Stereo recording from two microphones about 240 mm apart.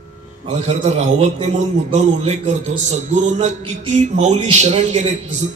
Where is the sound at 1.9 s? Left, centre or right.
Right.